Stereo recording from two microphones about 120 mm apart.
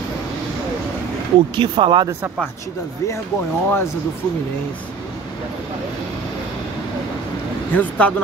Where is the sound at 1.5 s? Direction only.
40° right (ahead or behind).